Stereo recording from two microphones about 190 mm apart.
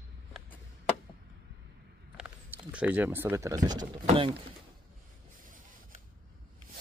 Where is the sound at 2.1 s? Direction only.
5° right (ahead or behind).